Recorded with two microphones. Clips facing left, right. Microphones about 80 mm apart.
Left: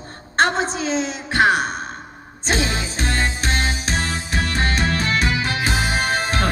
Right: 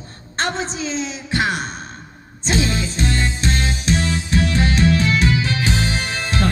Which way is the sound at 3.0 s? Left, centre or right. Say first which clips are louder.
Left 1 dB; left.